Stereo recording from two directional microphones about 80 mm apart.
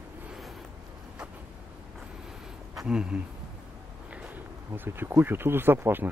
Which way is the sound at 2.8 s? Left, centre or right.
Centre.